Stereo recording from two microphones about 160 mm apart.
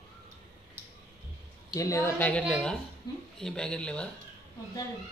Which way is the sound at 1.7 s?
20° left (ahead or behind).